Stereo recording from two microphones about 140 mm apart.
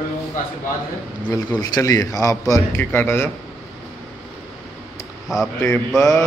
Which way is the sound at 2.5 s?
20° left (ahead or behind).